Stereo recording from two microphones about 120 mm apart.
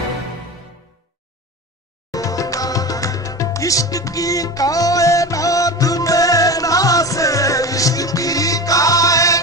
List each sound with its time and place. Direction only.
2.0 s music: 30° left (ahead or behind)